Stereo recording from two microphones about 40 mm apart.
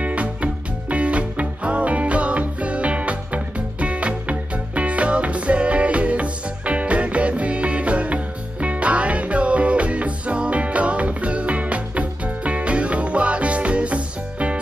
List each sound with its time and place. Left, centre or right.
0.0 s music: right